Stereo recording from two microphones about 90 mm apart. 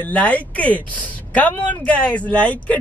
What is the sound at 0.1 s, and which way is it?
Speech, 15° left (ahead or behind).